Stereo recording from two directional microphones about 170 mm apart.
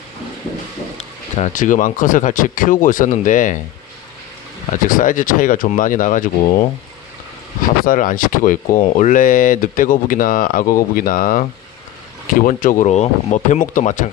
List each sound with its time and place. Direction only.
0.9 s speech: 45° left (ahead or behind)
4.8 s speech: 50° left (ahead or behind)
7.8 s speech: 55° left (ahead or behind)